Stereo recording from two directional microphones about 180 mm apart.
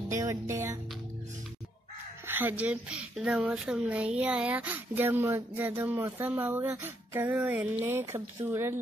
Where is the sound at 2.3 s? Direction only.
10° right (ahead or behind).